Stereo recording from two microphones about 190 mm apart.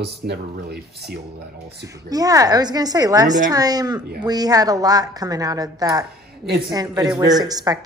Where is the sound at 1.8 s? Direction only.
20° right (ahead or behind).